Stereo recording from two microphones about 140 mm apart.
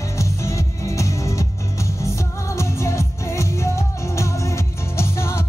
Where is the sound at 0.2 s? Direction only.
20° left (ahead or behind).